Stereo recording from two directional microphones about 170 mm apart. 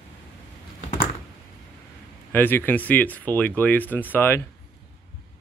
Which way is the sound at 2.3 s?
10° left (ahead or behind).